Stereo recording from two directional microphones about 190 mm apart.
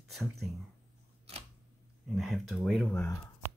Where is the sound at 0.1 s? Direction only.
Centre (ahead or behind).